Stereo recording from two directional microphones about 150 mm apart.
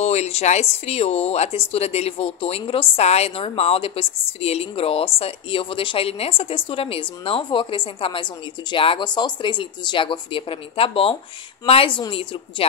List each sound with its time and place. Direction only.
0.0 s speech: 45° left (ahead or behind)